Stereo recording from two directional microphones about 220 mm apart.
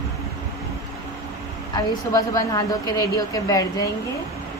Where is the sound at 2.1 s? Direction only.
15° left (ahead or behind).